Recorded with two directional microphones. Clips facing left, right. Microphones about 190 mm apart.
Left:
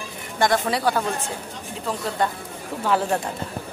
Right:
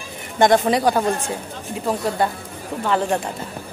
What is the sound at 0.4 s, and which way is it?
Speech, 20° right (ahead or behind).